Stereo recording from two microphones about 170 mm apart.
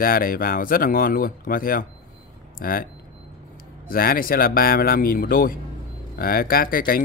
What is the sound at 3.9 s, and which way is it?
Speech, 60° left (ahead or behind).